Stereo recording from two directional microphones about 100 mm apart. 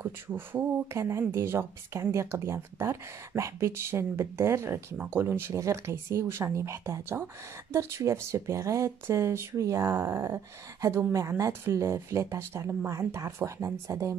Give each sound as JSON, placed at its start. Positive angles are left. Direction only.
{"t": 0.0, "sound": "speech", "side_deg": -20}